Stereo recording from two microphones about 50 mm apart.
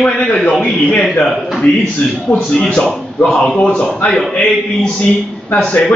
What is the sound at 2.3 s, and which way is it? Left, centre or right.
Speech, centre.